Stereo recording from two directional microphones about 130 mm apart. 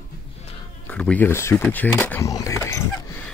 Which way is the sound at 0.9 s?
10° left (ahead or behind).